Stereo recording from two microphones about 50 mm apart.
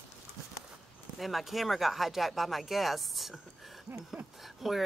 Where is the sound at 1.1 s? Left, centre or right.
Centre.